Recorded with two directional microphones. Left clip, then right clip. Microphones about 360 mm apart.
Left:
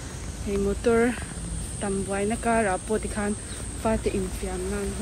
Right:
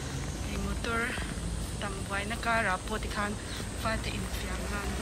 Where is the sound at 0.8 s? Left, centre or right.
Centre.